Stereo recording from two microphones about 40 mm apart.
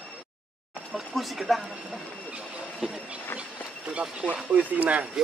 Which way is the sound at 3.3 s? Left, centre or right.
Left.